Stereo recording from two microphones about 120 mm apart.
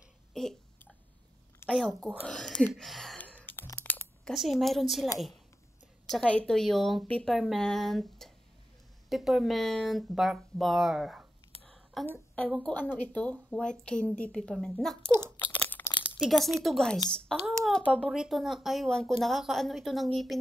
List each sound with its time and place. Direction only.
0.3 s a sound: 5° left (ahead or behind)
1.8 s a woman's voice: 5° left (ahead or behind)
3.2 s clicking: 10° left (ahead or behind)
4.3 s a woman's voice: centre (ahead or behind)
6.2 s a woman's voice: 10° left (ahead or behind)
11.6 s a sound: centre (ahead or behind)
12.4 s a woman's voice: centre (ahead or behind)
12.7 s a woman's voice: 15° left (ahead or behind)
15.4 s crunch: 15° left (ahead or behind)
16.2 s a woman's voice: centre (ahead or behind)
18.1 s a woman's voice: 5° right (ahead or behind)